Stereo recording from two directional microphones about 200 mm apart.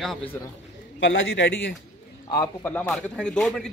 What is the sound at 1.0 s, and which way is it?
Speech, 70° left (ahead or behind).